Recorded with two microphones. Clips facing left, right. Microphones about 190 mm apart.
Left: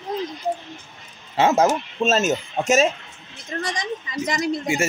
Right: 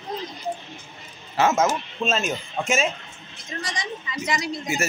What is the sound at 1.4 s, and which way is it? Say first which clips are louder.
A woman's voice: left 3 dB; 30° left (ahead or behind).